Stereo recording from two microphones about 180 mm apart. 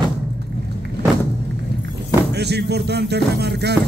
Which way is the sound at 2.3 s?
65° right (ahead or behind).